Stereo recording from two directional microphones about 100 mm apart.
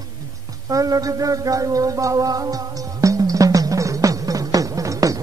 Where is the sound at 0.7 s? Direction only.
35° right (ahead or behind).